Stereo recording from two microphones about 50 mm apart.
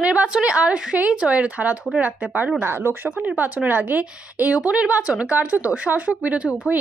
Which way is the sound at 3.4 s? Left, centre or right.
Right.